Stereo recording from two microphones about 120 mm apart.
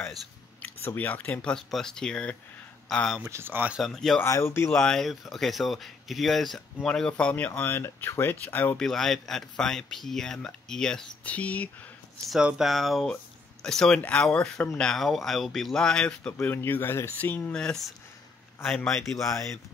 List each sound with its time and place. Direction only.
0.6 s speech: 15° left (ahead or behind)
3.2 s speech: 20° right (ahead or behind)
3.8 s speech: 5° left (ahead or behind)
4.2 s speech: 20° left (ahead or behind)
4.6 s speech: 5° left (ahead or behind)
8.8 s speech: 5° left (ahead or behind)
12.3 s speech: 5° right (ahead or behind)
19.1 s speech: 25° left (ahead or behind)